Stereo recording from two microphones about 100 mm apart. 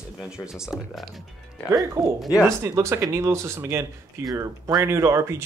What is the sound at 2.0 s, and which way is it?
Speech, 30° right (ahead or behind).